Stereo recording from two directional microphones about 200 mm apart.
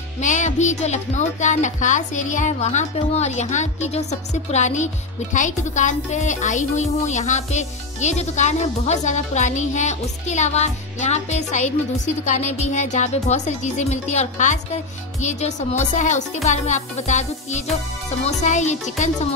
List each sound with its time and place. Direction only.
0.2 s speech: 35° left (ahead or behind)